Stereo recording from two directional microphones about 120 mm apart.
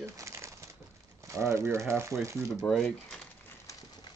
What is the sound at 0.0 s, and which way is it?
Bird, 25° right (ahead or behind).